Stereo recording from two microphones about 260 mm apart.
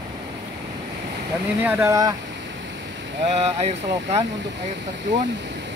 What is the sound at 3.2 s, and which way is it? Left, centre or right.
Speech, right.